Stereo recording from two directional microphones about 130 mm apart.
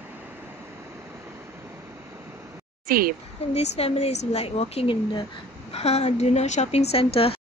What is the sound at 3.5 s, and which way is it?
Speech, 55° left (ahead or behind).